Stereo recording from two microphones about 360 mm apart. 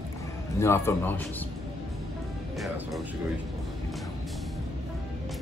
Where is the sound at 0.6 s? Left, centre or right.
Centre.